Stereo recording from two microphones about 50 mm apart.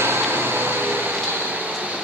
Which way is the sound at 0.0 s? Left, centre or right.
Right.